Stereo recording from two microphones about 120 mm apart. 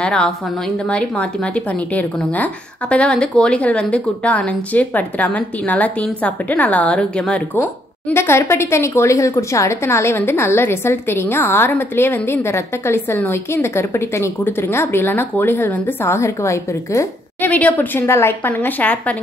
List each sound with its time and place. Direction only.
0.0 s a woman's voice: 5° left (ahead or behind); by 17.5 s 25° left (ahead or behind)
17.5 s a woman's voice: 15° left (ahead or behind)